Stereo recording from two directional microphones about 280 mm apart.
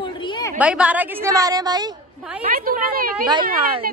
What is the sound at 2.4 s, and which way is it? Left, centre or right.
Speech, right.